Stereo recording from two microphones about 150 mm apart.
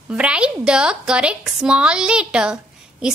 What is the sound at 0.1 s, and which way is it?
A woman's voice, 5° right (ahead or behind).